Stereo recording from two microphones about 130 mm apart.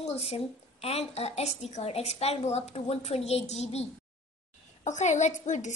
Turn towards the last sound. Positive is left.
turn(degrees=70)  # may be behind; listen again after turning